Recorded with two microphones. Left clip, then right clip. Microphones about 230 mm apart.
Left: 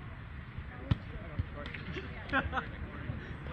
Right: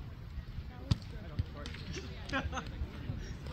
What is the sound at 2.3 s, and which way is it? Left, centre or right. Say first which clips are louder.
Speech: left 5 dB; right.